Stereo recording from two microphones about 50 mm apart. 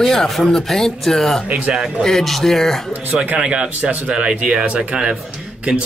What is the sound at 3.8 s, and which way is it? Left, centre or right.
Speech, right.